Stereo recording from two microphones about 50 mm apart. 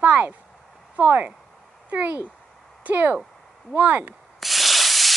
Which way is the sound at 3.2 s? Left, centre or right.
Centre.